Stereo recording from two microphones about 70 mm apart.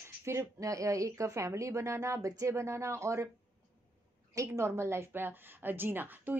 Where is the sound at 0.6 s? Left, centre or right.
Right.